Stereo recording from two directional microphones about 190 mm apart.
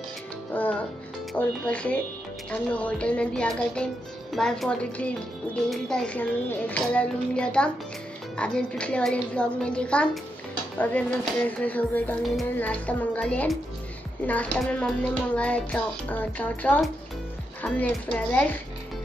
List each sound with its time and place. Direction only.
0.5 s music: 10° left (ahead or behind)
1.3 s a child's voice: 5° left (ahead or behind)